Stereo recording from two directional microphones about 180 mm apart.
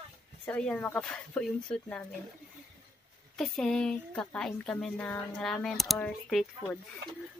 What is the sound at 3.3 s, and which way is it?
Speech, centre (ahead or behind).